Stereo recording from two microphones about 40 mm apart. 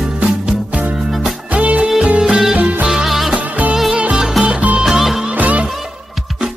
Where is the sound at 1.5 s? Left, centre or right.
Right.